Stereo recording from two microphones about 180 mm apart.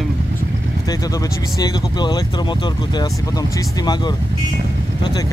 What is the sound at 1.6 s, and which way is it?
Speech, 25° left (ahead or behind).